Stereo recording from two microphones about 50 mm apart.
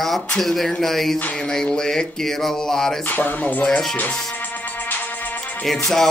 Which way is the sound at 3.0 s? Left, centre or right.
Left.